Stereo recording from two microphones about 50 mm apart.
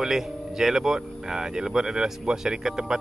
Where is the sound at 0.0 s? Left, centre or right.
Centre.